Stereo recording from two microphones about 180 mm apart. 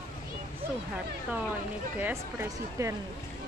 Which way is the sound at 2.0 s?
15° right (ahead or behind).